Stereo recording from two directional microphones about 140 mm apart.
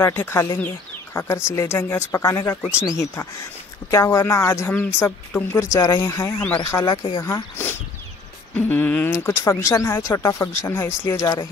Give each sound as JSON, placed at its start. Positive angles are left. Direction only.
{"t": 0.0, "sound": "speech", "side_deg": 15}
{"t": 7.1, "sound": "speech", "side_deg": 30}
{"t": 7.5, "sound": "a sound", "side_deg": 15}
{"t": 9.1, "sound": "speech", "side_deg": 20}